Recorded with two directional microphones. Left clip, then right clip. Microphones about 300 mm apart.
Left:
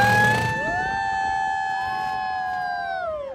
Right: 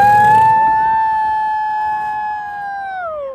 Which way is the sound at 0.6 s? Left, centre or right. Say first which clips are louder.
Right 11 dB; centre.